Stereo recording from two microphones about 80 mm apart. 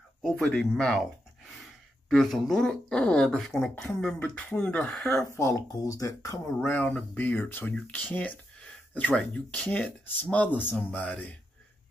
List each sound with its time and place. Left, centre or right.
0.2 s speech: centre
5.3 s speech: left
6.6 s speech: left